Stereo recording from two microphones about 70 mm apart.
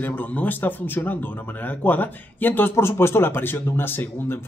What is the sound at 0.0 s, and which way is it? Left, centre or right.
Speech, left.